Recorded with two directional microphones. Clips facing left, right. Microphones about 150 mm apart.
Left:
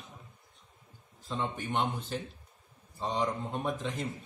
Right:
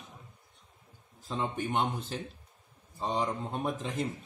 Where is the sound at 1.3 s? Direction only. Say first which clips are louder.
Right 2 dB; 5° right (ahead or behind).